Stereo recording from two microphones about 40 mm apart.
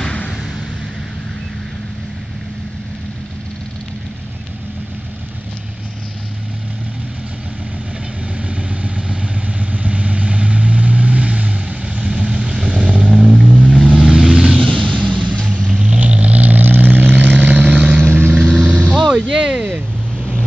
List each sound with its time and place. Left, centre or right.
8.4 s vehicle: right
14.8 s vehicle: right